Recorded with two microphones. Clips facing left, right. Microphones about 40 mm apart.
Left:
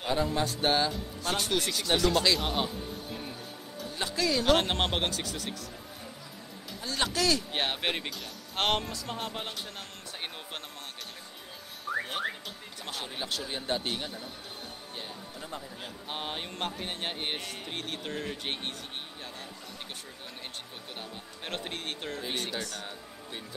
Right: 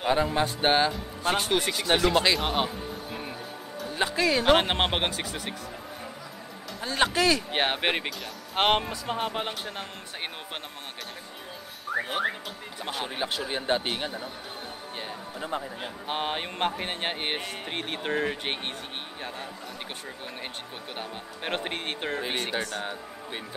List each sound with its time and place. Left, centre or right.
0.0 s a man's voice: right
2.7 s music: centre
3.9 s a man's voice: right
6.8 s a man's voice: right
11.9 s whistling: centre
12.8 s a man's voice: right
21.0 s a man's voice: right